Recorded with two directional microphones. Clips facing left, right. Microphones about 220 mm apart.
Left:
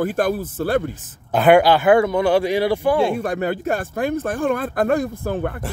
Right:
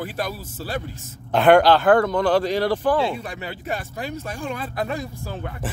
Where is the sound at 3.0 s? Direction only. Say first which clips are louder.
Left 6 dB; 50° left (ahead or behind).